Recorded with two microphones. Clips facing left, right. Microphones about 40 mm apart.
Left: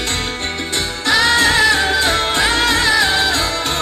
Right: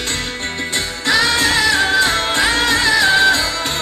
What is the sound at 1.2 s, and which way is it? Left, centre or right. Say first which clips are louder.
Music: left 4 dB; left.